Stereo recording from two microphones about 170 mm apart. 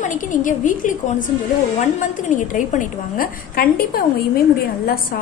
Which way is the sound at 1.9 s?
50° left (ahead or behind).